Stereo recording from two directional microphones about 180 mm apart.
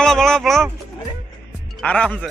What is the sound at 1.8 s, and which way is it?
Speech, 5° left (ahead or behind).